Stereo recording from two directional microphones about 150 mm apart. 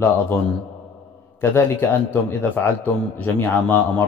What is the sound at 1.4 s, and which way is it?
A man's voice, 15° left (ahead or behind).